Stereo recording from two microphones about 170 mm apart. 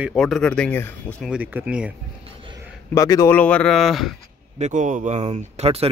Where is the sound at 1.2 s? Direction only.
5° right (ahead or behind).